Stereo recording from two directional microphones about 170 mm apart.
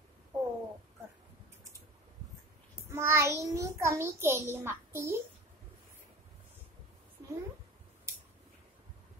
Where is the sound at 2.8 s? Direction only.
15° right (ahead or behind).